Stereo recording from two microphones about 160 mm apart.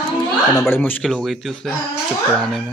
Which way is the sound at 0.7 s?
10° left (ahead or behind).